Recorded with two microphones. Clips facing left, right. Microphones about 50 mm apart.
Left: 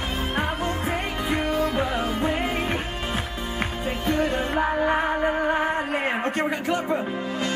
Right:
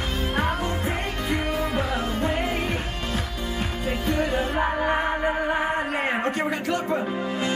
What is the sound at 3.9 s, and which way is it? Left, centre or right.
Music, centre.